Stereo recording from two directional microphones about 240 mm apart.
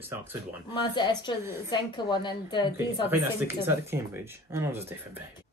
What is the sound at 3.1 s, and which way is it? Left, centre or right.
Speech, centre.